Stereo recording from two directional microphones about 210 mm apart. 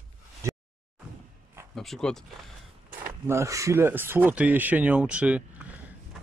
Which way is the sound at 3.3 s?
15° right (ahead or behind).